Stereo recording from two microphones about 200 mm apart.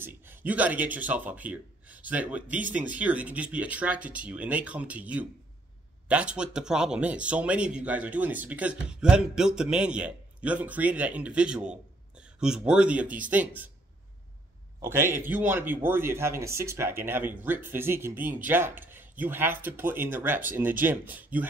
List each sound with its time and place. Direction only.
0.0 s speech: 10° right (ahead or behind)
14.8 s speech: 10° right (ahead or behind)